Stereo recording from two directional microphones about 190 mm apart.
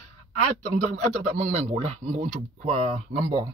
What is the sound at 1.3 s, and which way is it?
Speech, 35° right (ahead or behind).